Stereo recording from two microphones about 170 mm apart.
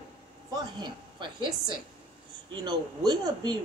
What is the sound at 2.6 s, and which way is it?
Speech, 25° right (ahead or behind).